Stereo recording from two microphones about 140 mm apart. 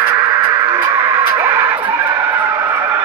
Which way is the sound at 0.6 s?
20° right (ahead or behind).